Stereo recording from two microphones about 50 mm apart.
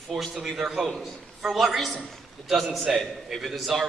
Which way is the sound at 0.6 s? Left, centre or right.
Centre.